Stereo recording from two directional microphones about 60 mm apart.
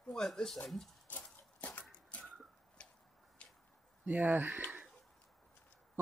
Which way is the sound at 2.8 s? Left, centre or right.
Centre.